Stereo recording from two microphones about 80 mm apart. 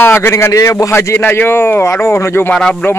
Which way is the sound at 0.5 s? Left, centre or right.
Left.